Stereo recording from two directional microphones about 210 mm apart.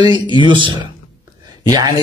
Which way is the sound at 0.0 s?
20° right (ahead or behind).